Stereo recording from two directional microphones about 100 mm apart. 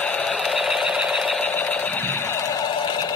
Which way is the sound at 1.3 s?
15° left (ahead or behind).